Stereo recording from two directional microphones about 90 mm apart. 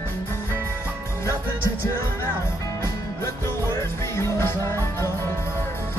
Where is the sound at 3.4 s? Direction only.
30° left (ahead or behind).